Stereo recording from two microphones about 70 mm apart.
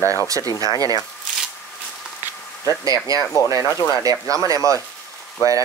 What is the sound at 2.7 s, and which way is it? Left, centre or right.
Speech, left.